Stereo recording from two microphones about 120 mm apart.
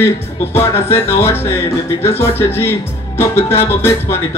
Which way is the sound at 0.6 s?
20° left (ahead or behind).